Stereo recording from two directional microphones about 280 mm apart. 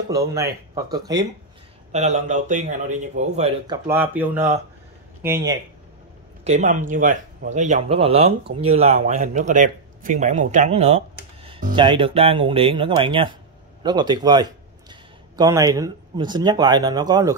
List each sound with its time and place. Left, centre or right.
0.1 s speech: centre
1.9 s speech: right
6.4 s a man's voice: right